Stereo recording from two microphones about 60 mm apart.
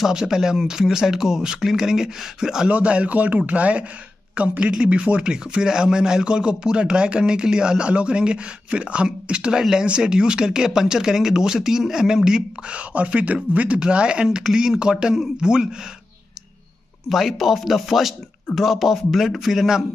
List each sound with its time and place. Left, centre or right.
0.0 s speech: centre
2.7 s speech: centre
17.1 s speech: centre